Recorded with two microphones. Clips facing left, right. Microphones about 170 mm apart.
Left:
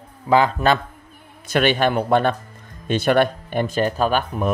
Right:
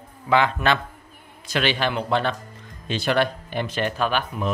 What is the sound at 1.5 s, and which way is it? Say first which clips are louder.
Speech: left 5 dB; 50° left (ahead or behind).